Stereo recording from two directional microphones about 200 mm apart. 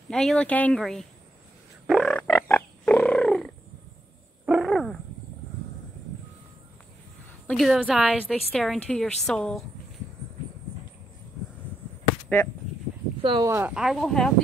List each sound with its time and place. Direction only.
0.1 s a woman's voice: 5° left (ahead or behind)
1.9 s frog: 5° left (ahead or behind)
4.5 s wild animals: centre (ahead or behind)
7.4 s a woman's voice: centre (ahead or behind)
13.2 s speech: 25° right (ahead or behind)
13.5 s a woman's voice: 10° right (ahead or behind)